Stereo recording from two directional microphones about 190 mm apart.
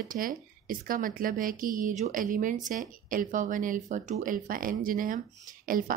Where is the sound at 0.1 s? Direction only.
45° right (ahead or behind).